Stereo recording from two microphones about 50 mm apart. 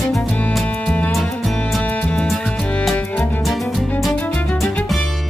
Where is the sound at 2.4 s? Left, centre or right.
Centre.